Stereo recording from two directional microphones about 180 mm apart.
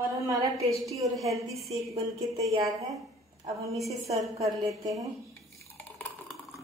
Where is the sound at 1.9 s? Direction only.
20° right (ahead or behind).